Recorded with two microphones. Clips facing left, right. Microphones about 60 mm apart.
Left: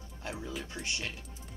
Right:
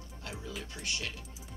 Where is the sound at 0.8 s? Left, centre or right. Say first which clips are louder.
Left 1 dB; centre.